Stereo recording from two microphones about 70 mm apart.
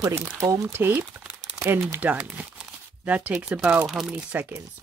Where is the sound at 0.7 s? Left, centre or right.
Right.